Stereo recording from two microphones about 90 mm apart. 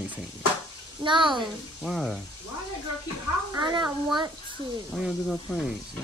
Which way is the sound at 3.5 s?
50° right (ahead or behind).